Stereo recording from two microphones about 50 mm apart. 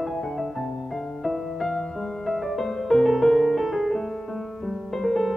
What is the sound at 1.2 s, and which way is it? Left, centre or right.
Music, centre.